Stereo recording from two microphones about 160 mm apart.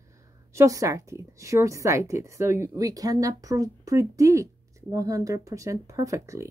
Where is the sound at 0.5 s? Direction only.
20° right (ahead or behind).